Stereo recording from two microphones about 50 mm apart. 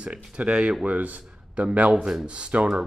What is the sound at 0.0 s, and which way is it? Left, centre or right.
Speech, right.